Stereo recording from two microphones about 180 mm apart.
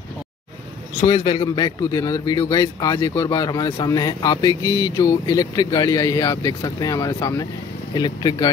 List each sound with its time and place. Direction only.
1.0 s speech: 30° left (ahead or behind)